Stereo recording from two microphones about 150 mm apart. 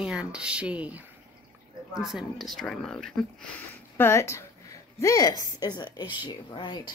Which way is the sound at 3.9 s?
15° left (ahead or behind).